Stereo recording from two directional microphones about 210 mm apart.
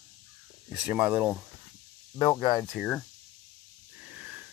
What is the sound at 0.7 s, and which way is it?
Speech, 5° right (ahead or behind).